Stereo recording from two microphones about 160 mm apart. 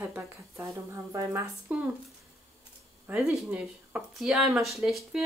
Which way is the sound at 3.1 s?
5° right (ahead or behind).